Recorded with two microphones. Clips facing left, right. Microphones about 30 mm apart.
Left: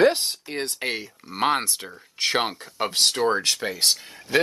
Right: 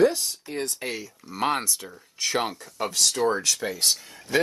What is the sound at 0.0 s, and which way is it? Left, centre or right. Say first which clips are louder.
Speech: left 2 dB; left.